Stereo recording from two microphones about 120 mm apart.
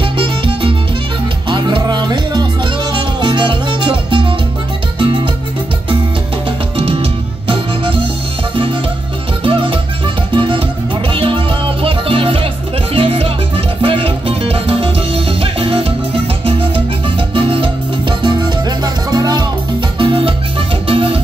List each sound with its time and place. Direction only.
0.0 s music: 45° right (ahead or behind)
6.8 s music: 50° right (ahead or behind)
9.4 s music: 45° right (ahead or behind)
20.0 s music: 45° right (ahead or behind)